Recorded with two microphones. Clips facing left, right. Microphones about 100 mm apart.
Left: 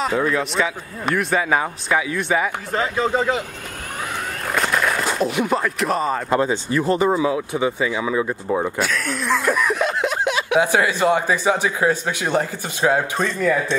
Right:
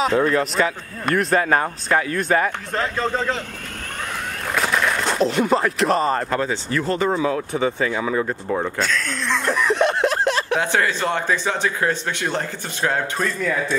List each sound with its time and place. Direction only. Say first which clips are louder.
0.0 s speech: right 2 dB; centre (ahead or behind)
4.6 s speech: even; centre (ahead or behind)
6.3 s speech: left 3 dB; 15° left (ahead or behind); by 13.7 s centre (ahead or behind)